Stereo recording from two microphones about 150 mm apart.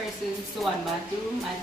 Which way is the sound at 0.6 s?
Centre (ahead or behind).